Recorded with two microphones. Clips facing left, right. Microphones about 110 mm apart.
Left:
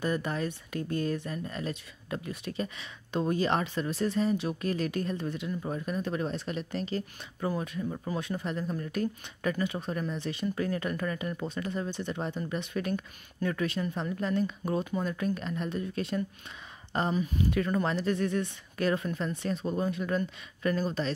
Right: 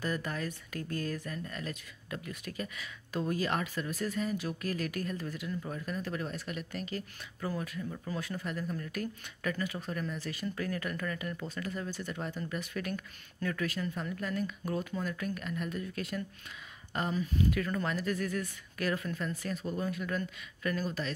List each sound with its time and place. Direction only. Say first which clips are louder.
0.0 s speech: left 5 dB; 20° left (ahead or behind)